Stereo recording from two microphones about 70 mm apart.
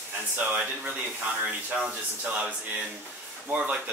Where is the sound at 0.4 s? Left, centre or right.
Right.